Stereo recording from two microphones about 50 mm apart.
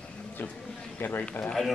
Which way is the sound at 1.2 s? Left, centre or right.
Left.